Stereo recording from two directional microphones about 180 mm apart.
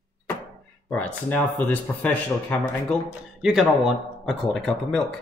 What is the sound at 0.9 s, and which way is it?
Speech, 10° left (ahead or behind).